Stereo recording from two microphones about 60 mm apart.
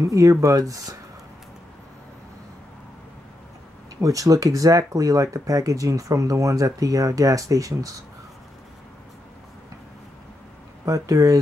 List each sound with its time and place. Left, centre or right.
0.1 s speech: right
4.0 s speech: right
10.9 s speech: right